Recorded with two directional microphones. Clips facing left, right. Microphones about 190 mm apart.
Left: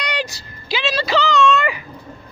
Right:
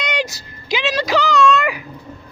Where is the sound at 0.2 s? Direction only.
15° right (ahead or behind).